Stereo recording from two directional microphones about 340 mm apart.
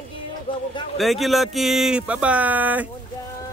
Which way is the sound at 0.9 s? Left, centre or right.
Centre.